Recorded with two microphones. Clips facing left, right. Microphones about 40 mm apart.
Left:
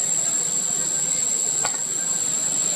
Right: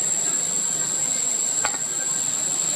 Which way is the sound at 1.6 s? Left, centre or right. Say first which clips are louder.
Right 3 dB; centre.